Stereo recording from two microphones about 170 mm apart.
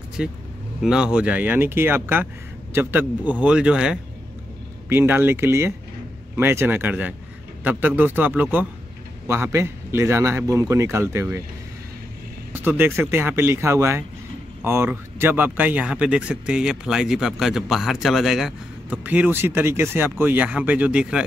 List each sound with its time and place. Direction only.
0.2 s speech: 5° right (ahead or behind)
12.5 s speech: 10° right (ahead or behind)